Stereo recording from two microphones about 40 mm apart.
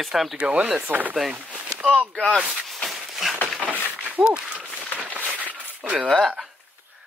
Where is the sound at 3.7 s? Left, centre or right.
Right.